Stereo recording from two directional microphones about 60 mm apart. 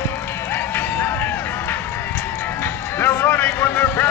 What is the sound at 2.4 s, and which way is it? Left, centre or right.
Speech, left.